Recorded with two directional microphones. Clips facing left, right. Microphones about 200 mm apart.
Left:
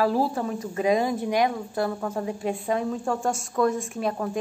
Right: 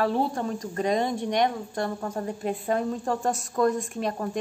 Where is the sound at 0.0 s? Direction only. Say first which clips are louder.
Left 2 dB; 5° left (ahead or behind).